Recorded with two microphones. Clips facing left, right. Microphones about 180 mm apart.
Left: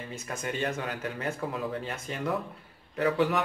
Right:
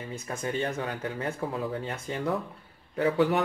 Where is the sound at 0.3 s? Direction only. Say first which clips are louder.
Right 1 dB; 30° right (ahead or behind).